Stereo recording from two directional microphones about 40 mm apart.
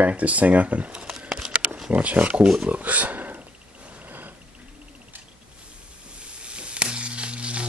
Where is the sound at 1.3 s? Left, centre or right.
Centre.